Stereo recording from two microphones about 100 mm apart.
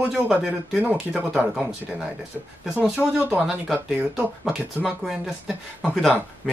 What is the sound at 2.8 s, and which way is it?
Speech, 15° right (ahead or behind).